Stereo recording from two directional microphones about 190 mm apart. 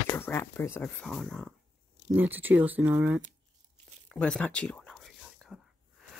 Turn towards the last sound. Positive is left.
turn(degrees=0)  # may be behind; listen again after turning